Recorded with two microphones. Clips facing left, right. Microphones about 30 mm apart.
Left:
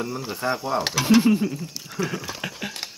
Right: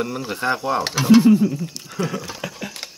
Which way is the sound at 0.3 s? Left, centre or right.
Right.